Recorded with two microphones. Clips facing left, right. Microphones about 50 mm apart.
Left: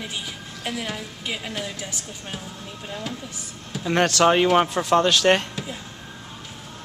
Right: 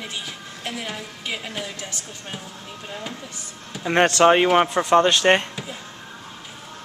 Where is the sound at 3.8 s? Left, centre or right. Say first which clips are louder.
Right 3 dB; right.